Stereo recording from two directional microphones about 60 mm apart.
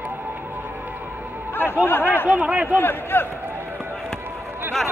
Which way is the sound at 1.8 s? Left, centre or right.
Left.